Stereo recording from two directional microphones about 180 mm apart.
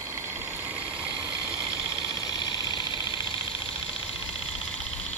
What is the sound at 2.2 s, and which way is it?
Vehicle, 20° left (ahead or behind).